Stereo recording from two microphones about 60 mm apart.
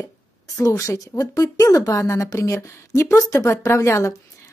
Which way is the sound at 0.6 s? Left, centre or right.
Left.